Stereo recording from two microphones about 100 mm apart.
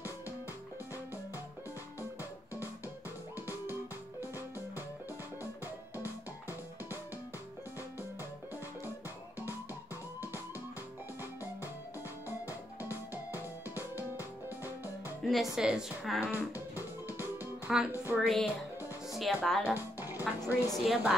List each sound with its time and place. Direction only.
13.7 s music: 20° right (ahead or behind)
15.2 s a woman's voice: centre (ahead or behind)
16.2 s music: 20° right (ahead or behind)
17.9 s a woman's voice: 20° right (ahead or behind)
18.2 s a woman's voice: 5° left (ahead or behind)
19.7 s music: 20° right (ahead or behind)
20.3 s a woman's voice: 35° left (ahead or behind)
20.7 s a woman's voice: centre (ahead or behind)